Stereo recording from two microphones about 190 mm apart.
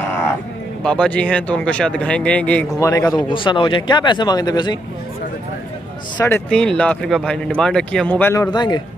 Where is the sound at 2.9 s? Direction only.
20° left (ahead or behind).